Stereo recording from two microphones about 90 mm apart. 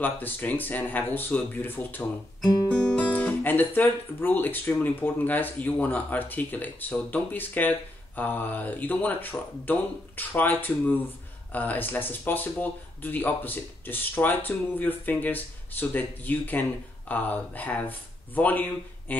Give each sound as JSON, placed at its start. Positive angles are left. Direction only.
{"t": 0.0, "sound": "speech", "side_deg": 20}
{"t": 2.4, "sound": "speech", "side_deg": 10}